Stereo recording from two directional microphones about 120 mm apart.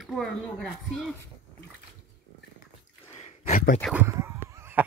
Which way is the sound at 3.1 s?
75° left (ahead or behind).